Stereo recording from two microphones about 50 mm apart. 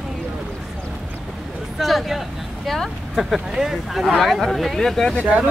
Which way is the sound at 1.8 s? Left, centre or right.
Centre.